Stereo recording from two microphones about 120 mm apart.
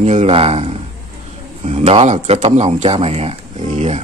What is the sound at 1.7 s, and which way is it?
Speech, 60° right (ahead or behind).